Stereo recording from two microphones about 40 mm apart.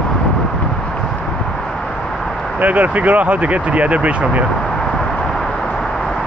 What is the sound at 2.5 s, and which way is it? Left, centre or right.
Speech, right.